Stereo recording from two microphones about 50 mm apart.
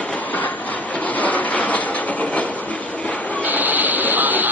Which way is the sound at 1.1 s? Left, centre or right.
Left.